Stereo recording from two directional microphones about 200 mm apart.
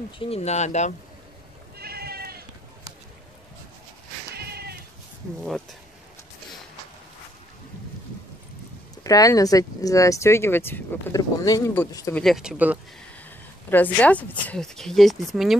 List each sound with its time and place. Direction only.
0.2 s speech: 30° left (ahead or behind)
1.8 s goat: 50° right (ahead or behind)
4.3 s cat: 55° right (ahead or behind)
5.4 s speech: centre (ahead or behind)
9.0 s speech: 15° left (ahead or behind)
12.2 s speech: centre (ahead or behind)
13.7 s speech: 10° left (ahead or behind)